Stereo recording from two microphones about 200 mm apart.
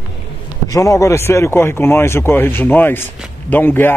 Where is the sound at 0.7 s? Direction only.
15° left (ahead or behind).